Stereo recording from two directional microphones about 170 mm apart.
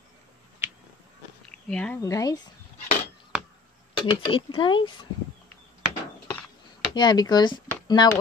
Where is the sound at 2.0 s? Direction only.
20° left (ahead or behind).